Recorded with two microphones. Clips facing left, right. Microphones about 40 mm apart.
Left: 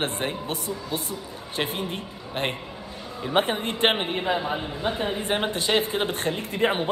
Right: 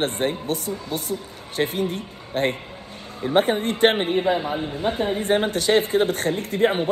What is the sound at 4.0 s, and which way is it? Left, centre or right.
Speech, centre.